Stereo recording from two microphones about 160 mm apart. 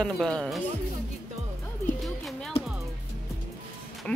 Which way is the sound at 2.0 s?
Centre (ahead or behind).